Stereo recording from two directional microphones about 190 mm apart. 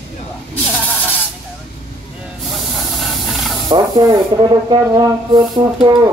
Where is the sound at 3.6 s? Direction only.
20° right (ahead or behind).